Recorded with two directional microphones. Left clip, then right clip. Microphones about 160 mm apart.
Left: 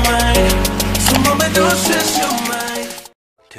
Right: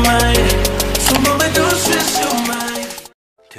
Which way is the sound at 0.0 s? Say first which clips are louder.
Right 1 dB; centre (ahead or behind).